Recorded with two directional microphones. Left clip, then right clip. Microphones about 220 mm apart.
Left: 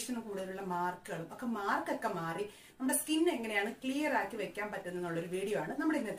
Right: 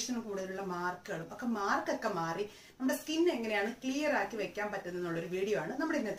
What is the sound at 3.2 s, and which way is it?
Speech, centre (ahead or behind).